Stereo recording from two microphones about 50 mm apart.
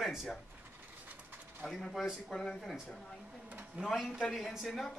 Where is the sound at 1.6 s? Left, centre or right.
Centre.